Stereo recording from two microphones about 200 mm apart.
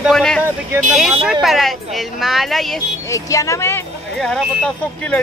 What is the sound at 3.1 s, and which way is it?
Speech, 15° left (ahead or behind).